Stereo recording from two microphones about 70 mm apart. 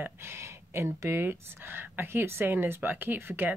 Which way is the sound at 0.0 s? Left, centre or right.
Right.